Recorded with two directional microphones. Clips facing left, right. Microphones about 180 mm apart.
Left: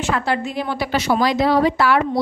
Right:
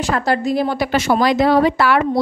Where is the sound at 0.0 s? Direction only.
40° right (ahead or behind).